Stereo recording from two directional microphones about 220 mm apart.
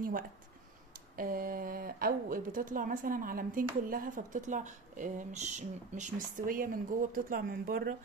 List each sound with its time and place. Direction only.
1.1 s a woman's voice: 40° right (ahead or behind)